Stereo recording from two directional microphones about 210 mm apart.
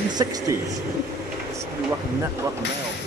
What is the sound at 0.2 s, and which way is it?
Speech, 15° right (ahead or behind).